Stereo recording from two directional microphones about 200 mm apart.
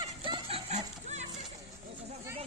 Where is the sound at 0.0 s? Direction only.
25° right (ahead or behind).